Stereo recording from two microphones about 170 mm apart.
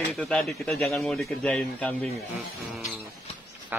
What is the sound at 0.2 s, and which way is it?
Speech, centre (ahead or behind).